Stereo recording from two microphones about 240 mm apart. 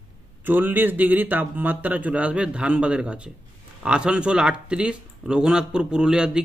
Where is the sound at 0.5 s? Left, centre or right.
Centre.